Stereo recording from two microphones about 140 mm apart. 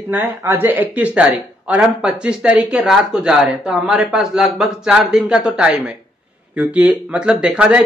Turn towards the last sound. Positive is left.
turn(degrees=-10)  # may be behind; listen again after turning